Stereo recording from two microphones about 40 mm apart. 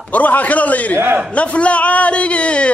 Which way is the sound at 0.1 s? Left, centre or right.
Left.